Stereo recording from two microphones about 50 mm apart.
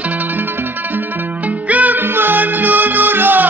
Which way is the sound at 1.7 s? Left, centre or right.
Right.